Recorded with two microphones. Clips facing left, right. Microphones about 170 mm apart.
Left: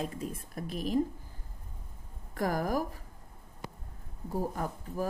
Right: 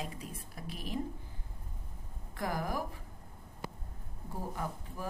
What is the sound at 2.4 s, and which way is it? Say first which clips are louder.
Speech: left 5 dB; 45° left (ahead or behind).